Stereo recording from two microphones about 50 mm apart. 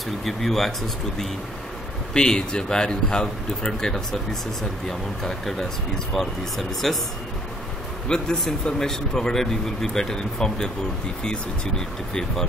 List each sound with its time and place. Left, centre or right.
0.2 s speech: centre
2.1 s speech: centre
8.1 s speech: centre
12.1 s speech: centre